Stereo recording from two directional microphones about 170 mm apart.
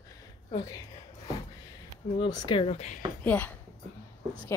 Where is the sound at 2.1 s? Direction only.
30° left (ahead or behind).